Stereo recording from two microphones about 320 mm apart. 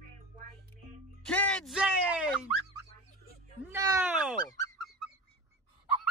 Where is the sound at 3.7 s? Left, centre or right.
Centre.